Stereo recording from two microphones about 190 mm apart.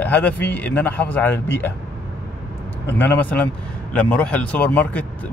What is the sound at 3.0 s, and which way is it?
Speech, 10° left (ahead or behind).